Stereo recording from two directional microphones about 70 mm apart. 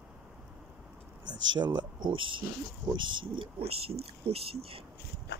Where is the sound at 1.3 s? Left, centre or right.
Right.